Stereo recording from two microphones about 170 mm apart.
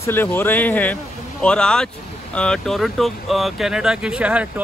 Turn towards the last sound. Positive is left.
turn(degrees=-5)  # may be behind; listen again after turning